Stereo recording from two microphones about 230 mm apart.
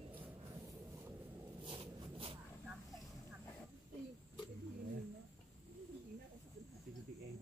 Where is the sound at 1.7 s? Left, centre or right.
Right.